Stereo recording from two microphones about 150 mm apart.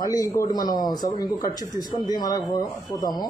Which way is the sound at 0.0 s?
25° left (ahead or behind).